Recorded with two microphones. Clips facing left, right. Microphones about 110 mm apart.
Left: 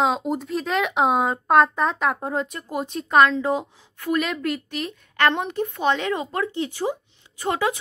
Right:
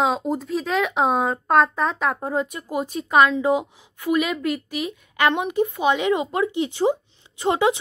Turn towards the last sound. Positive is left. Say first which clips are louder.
# right 4 dB
turn(degrees=-25)  # may be behind; listen again after turning